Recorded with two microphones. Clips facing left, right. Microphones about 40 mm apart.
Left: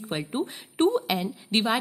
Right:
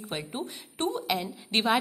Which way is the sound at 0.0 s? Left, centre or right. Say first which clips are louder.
Left 5 dB; centre.